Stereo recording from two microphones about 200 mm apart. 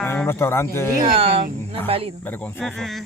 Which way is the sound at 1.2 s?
30° right (ahead or behind).